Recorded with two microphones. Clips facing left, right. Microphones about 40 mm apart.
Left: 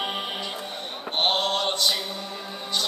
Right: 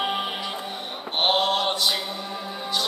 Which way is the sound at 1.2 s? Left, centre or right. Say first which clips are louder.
Right 2 dB; centre.